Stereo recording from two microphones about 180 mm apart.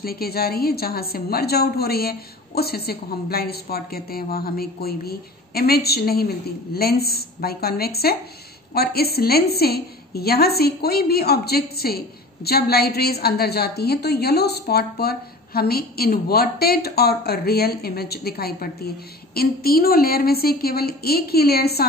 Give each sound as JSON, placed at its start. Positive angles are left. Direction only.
{"t": 0.0, "sound": "a woman's voice", "side_deg": 60}